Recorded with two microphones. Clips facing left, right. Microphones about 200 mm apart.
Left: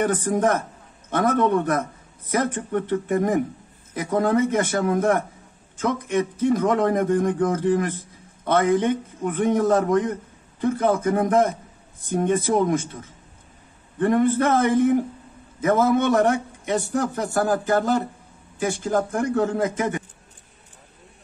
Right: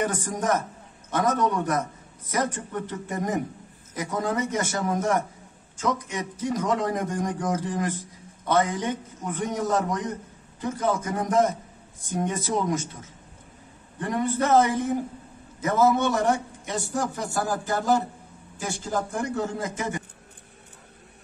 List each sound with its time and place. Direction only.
0.0 s a man's voice: 60° left (ahead or behind)
13.9 s a man's voice: 55° left (ahead or behind)